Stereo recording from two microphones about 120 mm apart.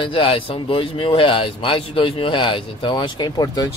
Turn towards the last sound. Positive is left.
turn(degrees=35)  # may be behind; listen again after turning